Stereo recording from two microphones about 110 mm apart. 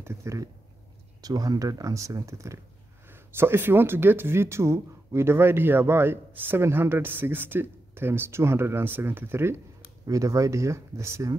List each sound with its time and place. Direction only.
0.0 s speech: 25° right (ahead or behind)